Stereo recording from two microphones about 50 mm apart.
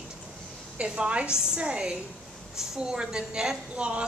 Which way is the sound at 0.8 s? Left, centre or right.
Right.